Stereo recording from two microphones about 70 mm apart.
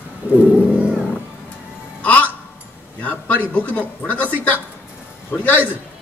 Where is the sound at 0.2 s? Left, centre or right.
Right.